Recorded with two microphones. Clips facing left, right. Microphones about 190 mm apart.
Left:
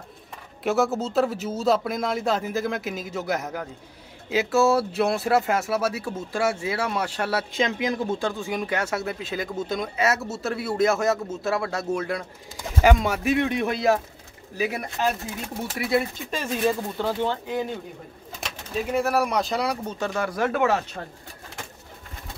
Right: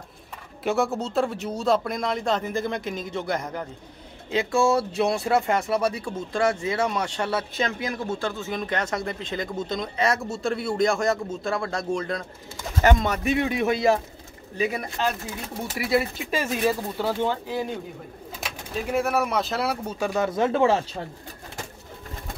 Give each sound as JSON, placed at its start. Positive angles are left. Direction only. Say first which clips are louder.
{"t": 0.7, "sound": "speech", "louder": "left 1 dB", "side_deg": 0}
{"t": 18.9, "sound": "speech", "louder": "left 1 dB", "side_deg": 0}
{"t": 20.2, "sound": "speech", "louder": "right 2 dB", "side_deg": -25}